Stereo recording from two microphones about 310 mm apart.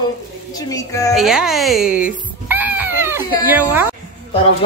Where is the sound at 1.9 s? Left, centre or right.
Left.